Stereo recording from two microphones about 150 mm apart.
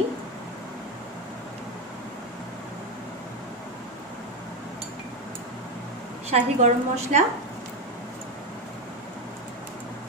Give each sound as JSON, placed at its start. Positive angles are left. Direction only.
{"t": 6.3, "sound": "a woman's voice", "side_deg": -50}